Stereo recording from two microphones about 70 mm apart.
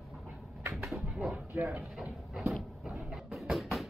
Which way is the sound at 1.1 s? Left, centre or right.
Centre.